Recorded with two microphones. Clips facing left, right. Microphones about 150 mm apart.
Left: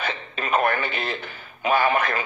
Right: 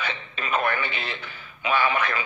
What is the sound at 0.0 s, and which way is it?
Speech, 45° left (ahead or behind).